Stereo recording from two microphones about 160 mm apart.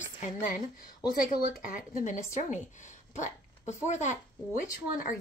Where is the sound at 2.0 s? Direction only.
50° left (ahead or behind).